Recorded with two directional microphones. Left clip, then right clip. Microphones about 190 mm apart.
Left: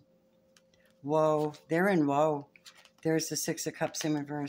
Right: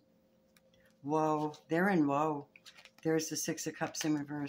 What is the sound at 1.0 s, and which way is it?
Speech, 30° left (ahead or behind).